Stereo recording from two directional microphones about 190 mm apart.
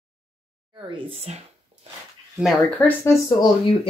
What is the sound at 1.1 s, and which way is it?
Speech, 35° right (ahead or behind).